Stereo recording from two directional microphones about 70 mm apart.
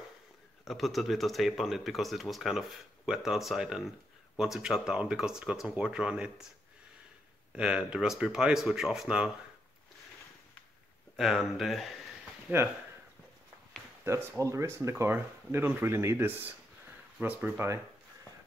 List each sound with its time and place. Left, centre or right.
0.7 s speech: centre
7.5 s speech: centre
11.1 s speech: centre
12.5 s speech: right
14.0 s speech: right